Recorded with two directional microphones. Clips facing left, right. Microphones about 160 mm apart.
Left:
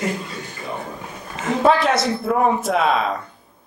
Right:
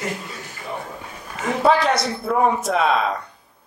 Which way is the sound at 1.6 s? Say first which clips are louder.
Left 1 dB; centre (ahead or behind).